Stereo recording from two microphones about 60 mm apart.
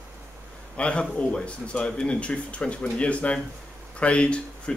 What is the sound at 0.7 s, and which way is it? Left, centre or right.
Speech, centre.